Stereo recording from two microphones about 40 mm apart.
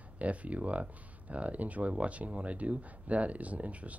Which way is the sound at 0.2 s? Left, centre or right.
Right.